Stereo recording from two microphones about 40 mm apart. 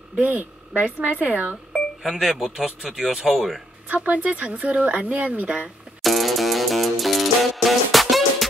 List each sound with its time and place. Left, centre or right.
0.2 s speech: right
2.0 s speech: centre
3.9 s speech: right
6.0 s music: centre